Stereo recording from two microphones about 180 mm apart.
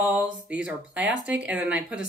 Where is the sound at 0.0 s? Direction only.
5° right (ahead or behind).